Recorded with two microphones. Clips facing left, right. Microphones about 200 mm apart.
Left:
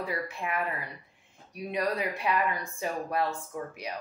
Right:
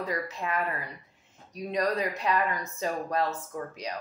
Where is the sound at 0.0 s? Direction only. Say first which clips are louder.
Right 1 dB; 10° left (ahead or behind).